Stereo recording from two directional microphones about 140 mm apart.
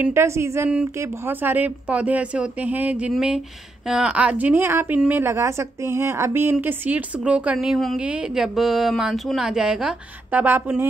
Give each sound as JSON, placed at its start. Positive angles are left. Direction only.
{"t": 0.0, "sound": "a woman's voice", "side_deg": -20}